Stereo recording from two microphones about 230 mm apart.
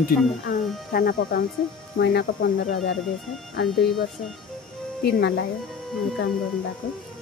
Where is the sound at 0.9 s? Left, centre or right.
Left.